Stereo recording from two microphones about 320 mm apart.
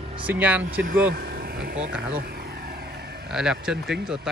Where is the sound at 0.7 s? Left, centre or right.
Right.